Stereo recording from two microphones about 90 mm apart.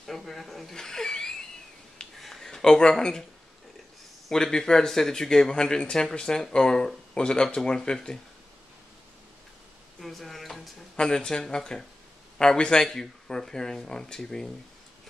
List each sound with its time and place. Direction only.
0.0 s speech: centre (ahead or behind)
2.1 s a sound: centre (ahead or behind)
4.3 s speech: 5° left (ahead or behind)
9.9 s speech: centre (ahead or behind)